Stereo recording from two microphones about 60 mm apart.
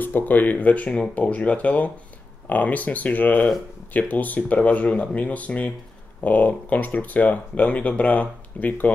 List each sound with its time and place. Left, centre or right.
0.0 s speech: left